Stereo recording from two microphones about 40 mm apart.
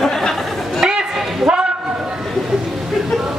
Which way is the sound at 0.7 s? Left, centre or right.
Centre.